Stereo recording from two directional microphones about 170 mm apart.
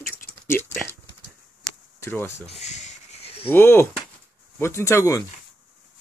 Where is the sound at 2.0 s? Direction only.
15° left (ahead or behind).